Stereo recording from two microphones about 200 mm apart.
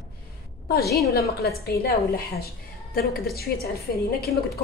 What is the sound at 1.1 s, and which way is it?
A woman's voice, 50° left (ahead or behind).